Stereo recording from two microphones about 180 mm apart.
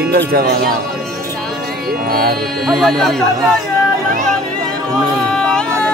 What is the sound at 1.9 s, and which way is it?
Speech, 55° right (ahead or behind).